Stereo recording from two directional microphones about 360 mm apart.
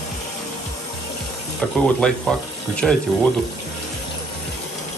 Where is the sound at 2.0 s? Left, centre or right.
Centre.